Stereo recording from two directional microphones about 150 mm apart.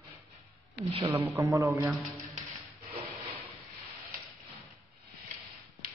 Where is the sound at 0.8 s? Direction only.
40° right (ahead or behind).